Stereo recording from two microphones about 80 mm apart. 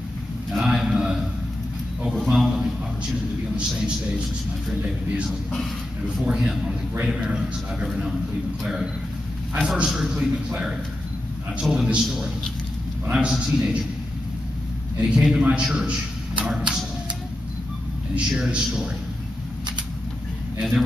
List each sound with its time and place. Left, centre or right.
0.5 s a sound: centre
3.5 s a man's voice: centre
6.2 s a man's voice: centre
9.6 s a man's voice: centre
11.7 s a man's voice: centre
15.0 s a man's voice: centre
18.3 s a man's voice: centre